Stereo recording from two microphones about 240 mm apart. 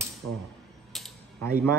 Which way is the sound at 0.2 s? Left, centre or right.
Right.